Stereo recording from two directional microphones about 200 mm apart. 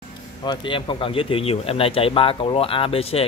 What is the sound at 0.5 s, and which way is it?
A man's voice, 25° left (ahead or behind).